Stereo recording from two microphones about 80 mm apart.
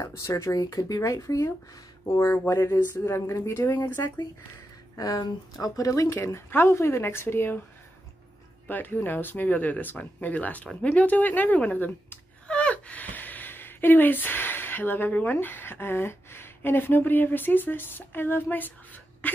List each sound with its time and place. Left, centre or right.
0.0 s speech: left
4.9 s speech: left
6.2 s speech: left
8.6 s speech: left
19.2 s a sound: centre